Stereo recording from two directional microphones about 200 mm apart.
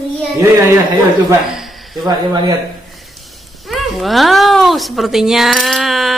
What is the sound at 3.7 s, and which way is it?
A child's voice, centre (ahead or behind).